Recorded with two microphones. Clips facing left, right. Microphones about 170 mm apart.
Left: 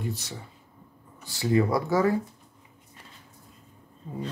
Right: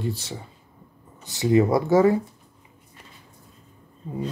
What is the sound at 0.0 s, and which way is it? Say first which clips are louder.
Speech: right 4 dB; 30° right (ahead or behind).